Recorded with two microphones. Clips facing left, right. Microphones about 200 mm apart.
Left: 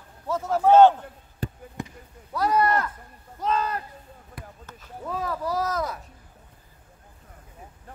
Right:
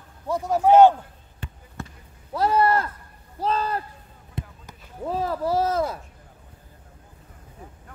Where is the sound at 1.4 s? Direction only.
35° left (ahead or behind).